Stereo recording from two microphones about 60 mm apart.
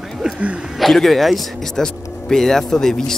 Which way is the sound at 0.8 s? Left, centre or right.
Centre.